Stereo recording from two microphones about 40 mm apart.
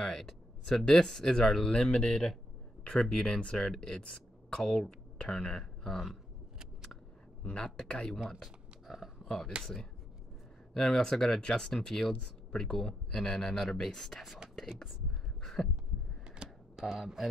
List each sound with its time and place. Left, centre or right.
0.0 s speech: centre
7.4 s speech: centre
8.3 s a sound: centre
9.5 s speech: right
10.7 s speech: centre
15.4 s heart sounds: centre
16.3 s cash register: right
16.9 s speech: centre